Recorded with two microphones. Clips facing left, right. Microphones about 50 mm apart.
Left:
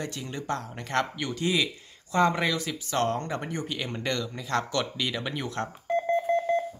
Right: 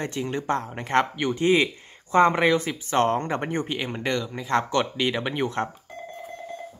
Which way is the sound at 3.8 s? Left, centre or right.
Centre.